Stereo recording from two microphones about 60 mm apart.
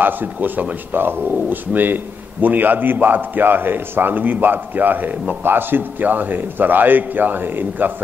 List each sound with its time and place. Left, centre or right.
0.0 s a man's voice: right